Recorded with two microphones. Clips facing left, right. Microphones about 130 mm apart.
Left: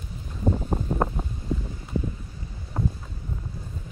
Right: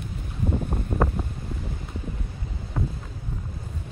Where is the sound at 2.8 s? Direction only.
20° left (ahead or behind).